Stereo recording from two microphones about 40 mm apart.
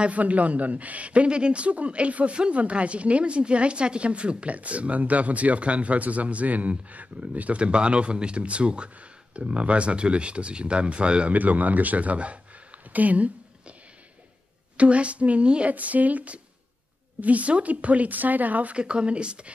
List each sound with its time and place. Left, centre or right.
0.0 s a man's voice: right
11.3 s speech: right
12.9 s a sound: right
14.8 s a man's voice: right
15.7 s a man's voice: right
18.8 s speech: right